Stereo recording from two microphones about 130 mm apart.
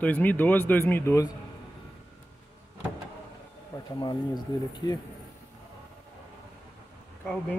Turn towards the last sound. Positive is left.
turn(degrees=10)  # may be behind; listen again after turning